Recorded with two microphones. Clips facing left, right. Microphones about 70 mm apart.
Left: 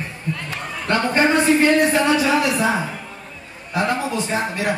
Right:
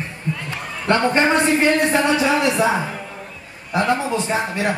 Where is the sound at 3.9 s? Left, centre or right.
Centre.